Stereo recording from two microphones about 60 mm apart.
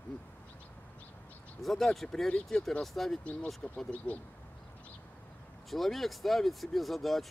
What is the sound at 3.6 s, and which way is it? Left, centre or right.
Speech, left.